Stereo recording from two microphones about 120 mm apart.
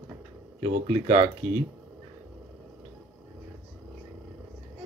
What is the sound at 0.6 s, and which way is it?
Speech, 45° right (ahead or behind).